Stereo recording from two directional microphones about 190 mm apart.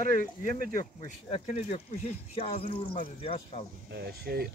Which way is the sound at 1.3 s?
35° left (ahead or behind).